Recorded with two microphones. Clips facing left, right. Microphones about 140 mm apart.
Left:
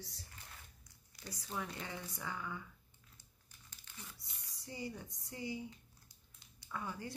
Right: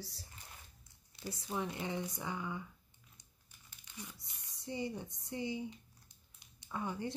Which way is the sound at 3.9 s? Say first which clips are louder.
Right 5 dB; 20° right (ahead or behind).